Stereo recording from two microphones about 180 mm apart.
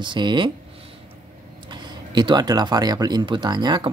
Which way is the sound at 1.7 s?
25° right (ahead or behind).